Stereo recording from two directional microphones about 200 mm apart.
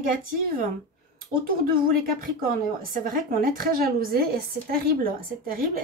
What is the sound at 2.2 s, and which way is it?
A woman's voice, 45° right (ahead or behind).